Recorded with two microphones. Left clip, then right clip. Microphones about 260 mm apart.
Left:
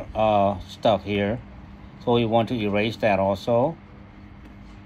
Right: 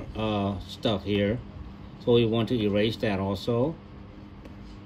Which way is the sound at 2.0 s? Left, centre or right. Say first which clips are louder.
Left 3 dB; left.